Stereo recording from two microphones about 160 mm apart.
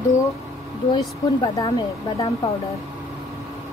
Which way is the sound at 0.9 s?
25° left (ahead or behind).